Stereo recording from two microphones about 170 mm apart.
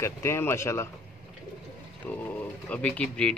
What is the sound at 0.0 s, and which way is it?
Speech, 15° left (ahead or behind).